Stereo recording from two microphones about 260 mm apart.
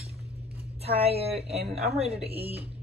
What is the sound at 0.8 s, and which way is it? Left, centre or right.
Speech, right.